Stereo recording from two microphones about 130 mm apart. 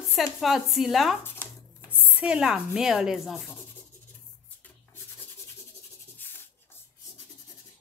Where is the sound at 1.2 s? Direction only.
15° left (ahead or behind).